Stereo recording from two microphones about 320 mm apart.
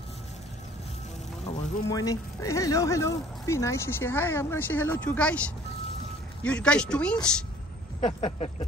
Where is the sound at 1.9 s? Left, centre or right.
Centre.